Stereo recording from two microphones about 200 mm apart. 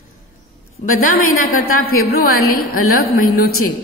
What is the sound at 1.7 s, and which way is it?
A woman's voice, 50° left (ahead or behind).